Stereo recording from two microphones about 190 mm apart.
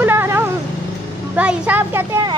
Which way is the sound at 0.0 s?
10° right (ahead or behind).